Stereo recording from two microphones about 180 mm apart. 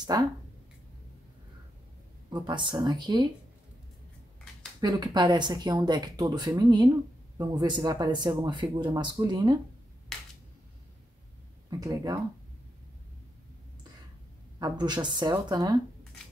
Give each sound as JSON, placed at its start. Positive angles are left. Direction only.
{"t": 0.0, "sound": "speech", "side_deg": -25}
{"t": 2.2, "sound": "speech", "side_deg": -25}
{"t": 4.7, "sound": "speech", "side_deg": -20}
{"t": 11.8, "sound": "speech", "side_deg": -20}
{"t": 14.6, "sound": "speech", "side_deg": -25}